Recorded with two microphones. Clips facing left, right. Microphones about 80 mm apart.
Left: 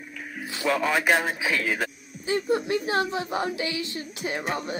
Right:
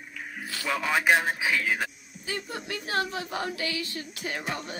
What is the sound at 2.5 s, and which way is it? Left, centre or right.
Speech, left.